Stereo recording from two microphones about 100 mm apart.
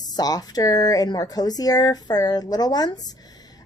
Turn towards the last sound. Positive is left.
turn(degrees=40)  # may be behind; listen again after turning